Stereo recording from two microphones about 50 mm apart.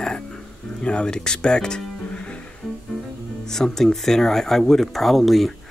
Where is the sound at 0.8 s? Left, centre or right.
Centre.